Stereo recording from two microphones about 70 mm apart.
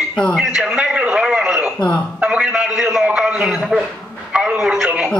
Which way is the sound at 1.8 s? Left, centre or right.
Centre.